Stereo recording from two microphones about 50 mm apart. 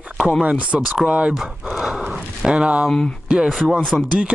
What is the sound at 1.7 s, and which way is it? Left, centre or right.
Horse, centre.